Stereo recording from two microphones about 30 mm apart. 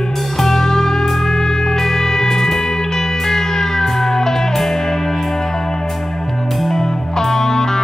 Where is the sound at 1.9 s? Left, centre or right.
Centre.